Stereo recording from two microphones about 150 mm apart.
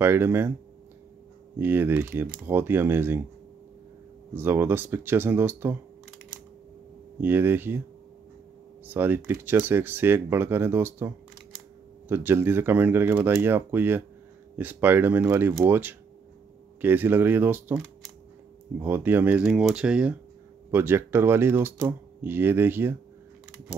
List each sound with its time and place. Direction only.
0.0 s speech: 15° right (ahead or behind)
1.6 s speech: 15° right (ahead or behind)
4.3 s speech: 15° right (ahead or behind)
7.2 s speech: 15° right (ahead or behind)
8.8 s speech: 15° right (ahead or behind)